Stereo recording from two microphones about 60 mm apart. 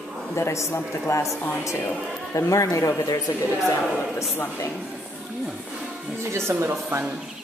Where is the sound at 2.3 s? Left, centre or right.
Left.